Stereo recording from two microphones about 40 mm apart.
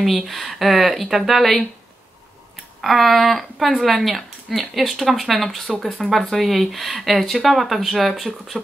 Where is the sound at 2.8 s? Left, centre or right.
Centre.